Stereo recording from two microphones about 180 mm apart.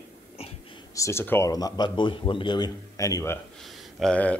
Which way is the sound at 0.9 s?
15° left (ahead or behind).